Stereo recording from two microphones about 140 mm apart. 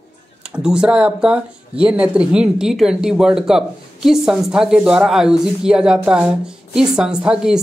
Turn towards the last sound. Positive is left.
turn(degrees=-5)  # may be behind; listen again after turning